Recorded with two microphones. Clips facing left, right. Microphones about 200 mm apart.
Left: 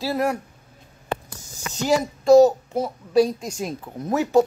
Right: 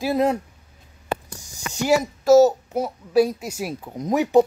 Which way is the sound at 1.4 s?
15° right (ahead or behind).